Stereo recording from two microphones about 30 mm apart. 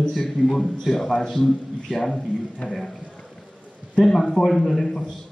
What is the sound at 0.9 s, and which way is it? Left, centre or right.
Speech, left.